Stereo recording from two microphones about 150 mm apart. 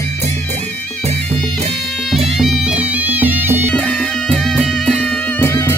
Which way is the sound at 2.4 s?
Centre (ahead or behind).